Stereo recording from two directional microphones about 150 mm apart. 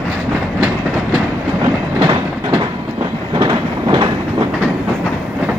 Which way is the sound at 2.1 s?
30° right (ahead or behind).